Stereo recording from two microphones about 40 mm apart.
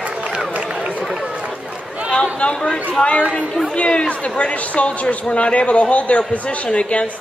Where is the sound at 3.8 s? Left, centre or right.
Left.